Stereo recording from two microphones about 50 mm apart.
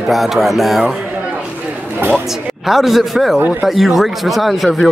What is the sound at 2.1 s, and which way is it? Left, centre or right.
Speech, centre.